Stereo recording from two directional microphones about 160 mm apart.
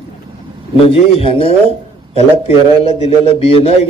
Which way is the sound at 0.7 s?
35° left (ahead or behind).